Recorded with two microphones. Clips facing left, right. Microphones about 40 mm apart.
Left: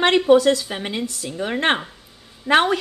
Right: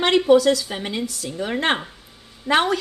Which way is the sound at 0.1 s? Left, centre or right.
Left.